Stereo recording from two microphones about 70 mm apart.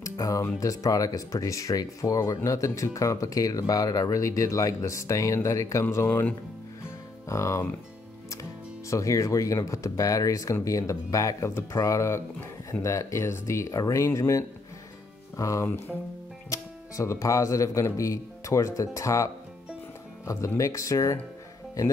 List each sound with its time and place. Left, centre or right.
0.0 s music: left
0.6 s speech: left
7.2 s speech: left